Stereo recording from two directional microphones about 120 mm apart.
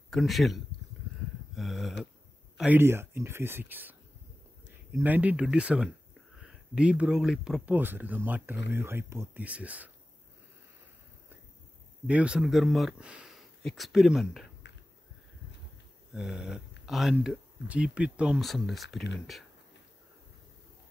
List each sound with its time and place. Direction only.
0.1 s speech: centre (ahead or behind)
1.5 s a sound: centre (ahead or behind)
2.5 s speech: 10° right (ahead or behind)
2.8 s speech: 20° right (ahead or behind)
5.0 s speech: 15° right (ahead or behind)
7.7 s speech: 15° right (ahead or behind)
12.1 s speech: 10° right (ahead or behind)
16.1 s speech: 5° right (ahead or behind)